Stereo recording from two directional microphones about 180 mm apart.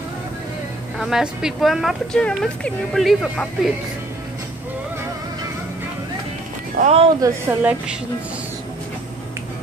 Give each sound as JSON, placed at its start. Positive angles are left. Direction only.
{"t": 0.9, "sound": "a woman's voice", "side_deg": 0}
{"t": 6.8, "sound": "speech", "side_deg": -50}
{"t": 7.2, "sound": "a woman's voice", "side_deg": -10}